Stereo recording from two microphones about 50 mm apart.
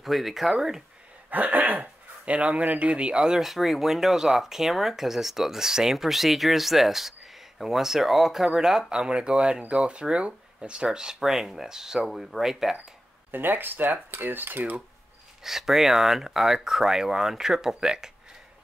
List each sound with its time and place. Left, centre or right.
0.0 s speech: centre
1.3 s speech: right
3.2 s speech: centre
13.3 s speech: right
15.4 s speech: centre